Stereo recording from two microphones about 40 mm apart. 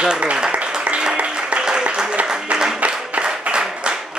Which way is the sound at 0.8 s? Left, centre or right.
Right.